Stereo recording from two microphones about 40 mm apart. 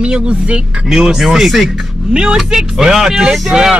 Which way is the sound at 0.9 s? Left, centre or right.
Centre.